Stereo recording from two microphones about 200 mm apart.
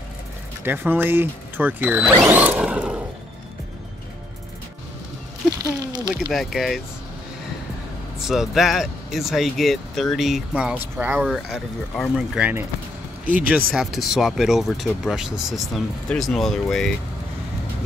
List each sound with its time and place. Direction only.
0.7 s speech: 10° right (ahead or behind)
5.5 s a sound: 20° right (ahead or behind)
6.3 s speech: centre (ahead or behind)
8.2 s speech: centre (ahead or behind)